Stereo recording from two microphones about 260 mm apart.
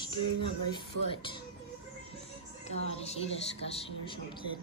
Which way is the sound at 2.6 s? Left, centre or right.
Left.